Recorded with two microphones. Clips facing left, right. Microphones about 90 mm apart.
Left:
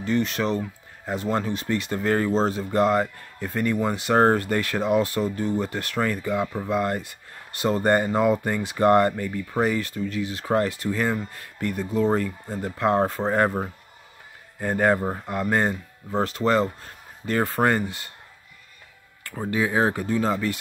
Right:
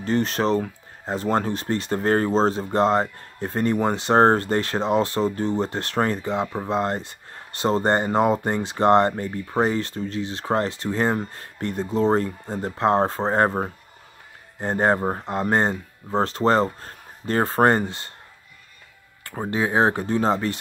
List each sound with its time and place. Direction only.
0.0 s speech: 35° right (ahead or behind)
19.3 s speech: 30° right (ahead or behind)